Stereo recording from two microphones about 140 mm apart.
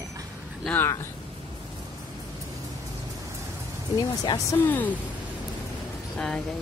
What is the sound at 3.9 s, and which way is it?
Speech, 30° left (ahead or behind).